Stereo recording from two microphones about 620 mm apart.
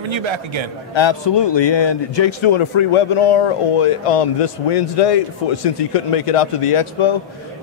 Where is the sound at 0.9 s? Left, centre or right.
Left.